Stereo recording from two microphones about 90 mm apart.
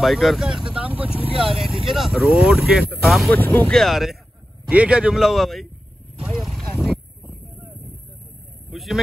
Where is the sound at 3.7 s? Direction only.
Centre (ahead or behind).